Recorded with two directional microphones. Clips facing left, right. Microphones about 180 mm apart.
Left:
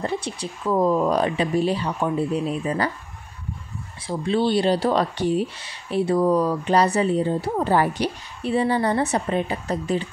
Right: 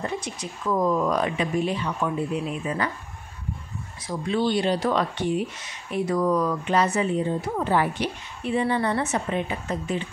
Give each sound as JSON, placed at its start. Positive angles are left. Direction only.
{"t": 0.0, "sound": "speech", "side_deg": 30}
{"t": 4.1, "sound": "speech", "side_deg": 30}